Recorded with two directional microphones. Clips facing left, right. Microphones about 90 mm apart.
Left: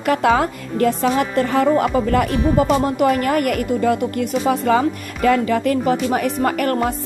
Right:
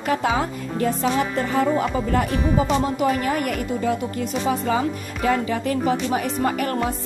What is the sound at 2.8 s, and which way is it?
A woman's voice, 55° left (ahead or behind).